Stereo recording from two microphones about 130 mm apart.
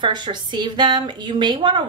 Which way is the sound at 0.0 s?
35° right (ahead or behind).